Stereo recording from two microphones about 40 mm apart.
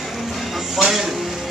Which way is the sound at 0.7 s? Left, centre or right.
Centre.